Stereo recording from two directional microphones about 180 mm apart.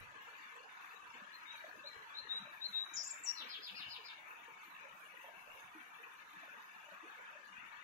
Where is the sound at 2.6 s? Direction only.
50° right (ahead or behind).